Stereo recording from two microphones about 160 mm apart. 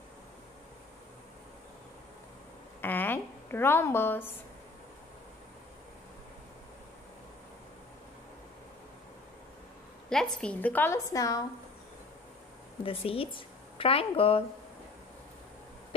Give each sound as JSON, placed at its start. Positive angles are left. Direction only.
{"t": 2.8, "sound": "a sound", "side_deg": 10}
{"t": 10.0, "sound": "a woman's voice", "side_deg": 5}
{"t": 12.8, "sound": "a woman's voice", "side_deg": 35}